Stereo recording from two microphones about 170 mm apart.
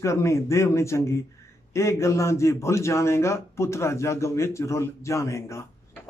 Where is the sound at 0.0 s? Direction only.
15° left (ahead or behind).